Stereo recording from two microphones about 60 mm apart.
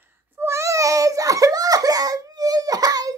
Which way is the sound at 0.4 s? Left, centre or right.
Right.